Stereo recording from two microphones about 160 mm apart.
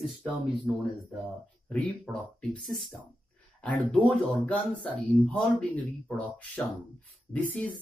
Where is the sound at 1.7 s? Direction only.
5° left (ahead or behind).